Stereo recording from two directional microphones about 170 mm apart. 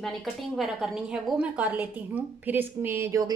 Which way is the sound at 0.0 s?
Centre (ahead or behind).